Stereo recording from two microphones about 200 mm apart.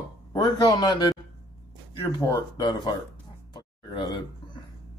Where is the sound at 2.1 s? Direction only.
20° left (ahead or behind).